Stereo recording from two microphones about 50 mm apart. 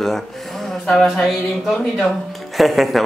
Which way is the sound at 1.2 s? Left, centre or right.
Centre.